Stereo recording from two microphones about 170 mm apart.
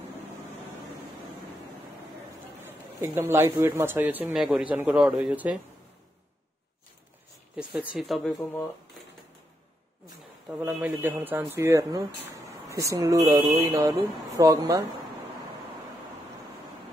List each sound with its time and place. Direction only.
2.6 s a sound: 15° right (ahead or behind)
3.5 s speech: 15° right (ahead or behind)
7.9 s speech: centre (ahead or behind)
10.6 s speech: 10° right (ahead or behind)